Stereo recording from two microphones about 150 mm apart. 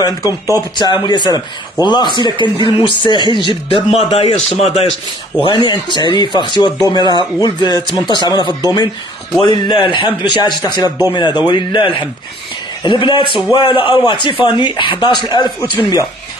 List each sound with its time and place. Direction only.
0.0 s speech: 25° left (ahead or behind)
4.1 s a man's voice: 45° left (ahead or behind)
5.4 s speech: 35° left (ahead or behind)